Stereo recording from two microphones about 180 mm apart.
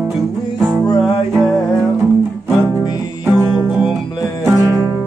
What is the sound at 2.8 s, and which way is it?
Music, 20° left (ahead or behind).